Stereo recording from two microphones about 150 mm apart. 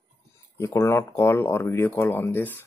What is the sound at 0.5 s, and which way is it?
Speech, 20° left (ahead or behind).